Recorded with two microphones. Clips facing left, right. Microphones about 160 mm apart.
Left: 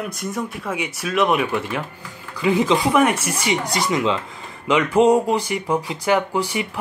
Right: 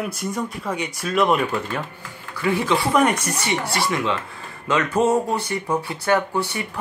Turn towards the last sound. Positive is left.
turn(degrees=10)  # may be behind; listen again after turning